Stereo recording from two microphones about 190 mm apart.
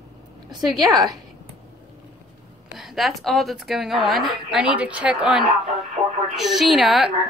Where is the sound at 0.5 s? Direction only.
20° right (ahead or behind).